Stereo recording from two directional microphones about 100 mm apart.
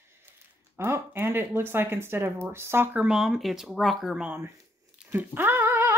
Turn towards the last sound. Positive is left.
turn(degrees=-25)  # may be behind; listen again after turning